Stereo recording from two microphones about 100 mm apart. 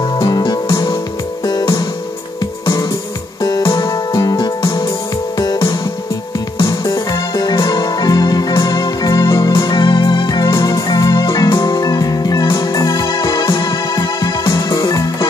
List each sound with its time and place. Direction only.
0.2 s music: 45° left (ahead or behind)